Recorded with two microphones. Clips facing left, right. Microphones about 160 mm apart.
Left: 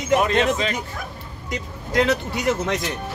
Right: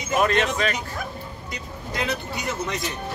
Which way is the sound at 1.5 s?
90° left.